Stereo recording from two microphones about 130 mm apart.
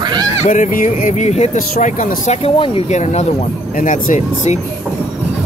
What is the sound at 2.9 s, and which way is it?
Speech, 60° left (ahead or behind).